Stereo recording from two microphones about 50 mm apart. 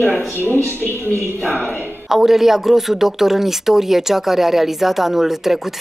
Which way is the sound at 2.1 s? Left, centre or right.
Centre.